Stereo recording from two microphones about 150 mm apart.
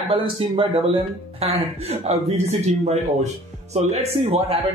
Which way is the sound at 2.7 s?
50° right (ahead or behind).